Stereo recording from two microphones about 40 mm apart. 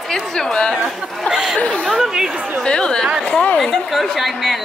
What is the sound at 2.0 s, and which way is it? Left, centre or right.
Chatter, centre.